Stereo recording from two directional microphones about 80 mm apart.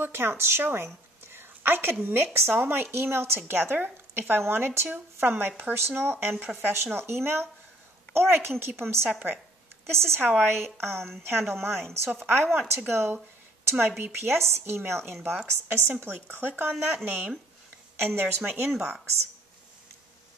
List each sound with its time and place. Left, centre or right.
0.0 s a woman's voice: right
9.8 s a woman's voice: right
18.8 s a woman's voice: centre